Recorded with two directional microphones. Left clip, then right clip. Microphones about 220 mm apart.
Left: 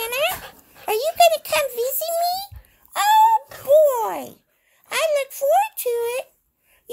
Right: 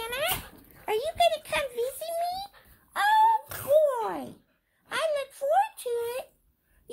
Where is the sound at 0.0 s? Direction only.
45° left (ahead or behind).